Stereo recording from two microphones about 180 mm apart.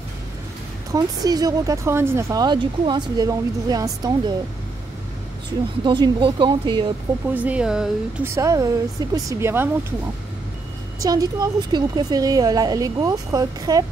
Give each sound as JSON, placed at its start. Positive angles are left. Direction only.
{"t": 0.9, "sound": "speech", "side_deg": -20}
{"t": 5.9, "sound": "speech", "side_deg": -25}
{"t": 7.3, "sound": "speech", "side_deg": -5}
{"t": 8.4, "sound": "speech", "side_deg": -20}
{"t": 11.0, "sound": "speech", "side_deg": -20}